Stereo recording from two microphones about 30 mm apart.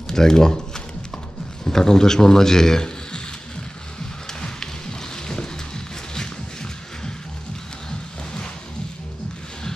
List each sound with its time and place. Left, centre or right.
0.1 s speech: centre
4.3 s music: left